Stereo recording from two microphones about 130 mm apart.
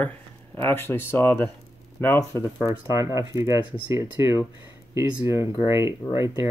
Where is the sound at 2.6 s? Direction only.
25° right (ahead or behind).